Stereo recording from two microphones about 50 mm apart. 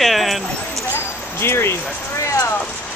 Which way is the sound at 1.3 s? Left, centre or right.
Left.